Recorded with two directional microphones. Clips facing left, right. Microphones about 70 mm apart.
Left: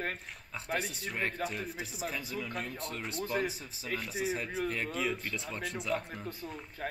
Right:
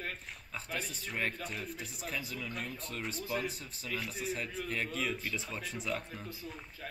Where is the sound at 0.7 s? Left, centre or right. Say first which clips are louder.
Left 6 dB; left.